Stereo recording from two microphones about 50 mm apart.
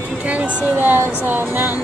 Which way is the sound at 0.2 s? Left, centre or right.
Right.